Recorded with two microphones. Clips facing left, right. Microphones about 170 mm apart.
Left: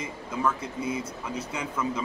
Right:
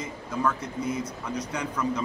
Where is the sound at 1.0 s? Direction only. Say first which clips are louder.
Right 2 dB; 25° left (ahead or behind).